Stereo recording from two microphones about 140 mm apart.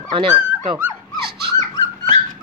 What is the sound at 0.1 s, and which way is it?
Speech, 35° right (ahead or behind).